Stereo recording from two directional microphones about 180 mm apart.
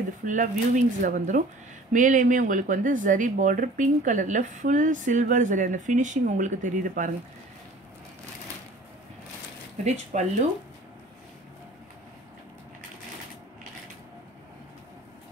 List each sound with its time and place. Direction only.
0.2 s speech: 45° right (ahead or behind)
9.8 s speech: 45° right (ahead or behind)